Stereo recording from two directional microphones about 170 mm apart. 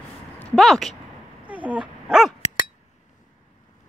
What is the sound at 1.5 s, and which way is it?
Dog, 10° right (ahead or behind).